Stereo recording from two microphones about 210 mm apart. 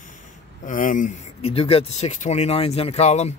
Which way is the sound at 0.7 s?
40° left (ahead or behind).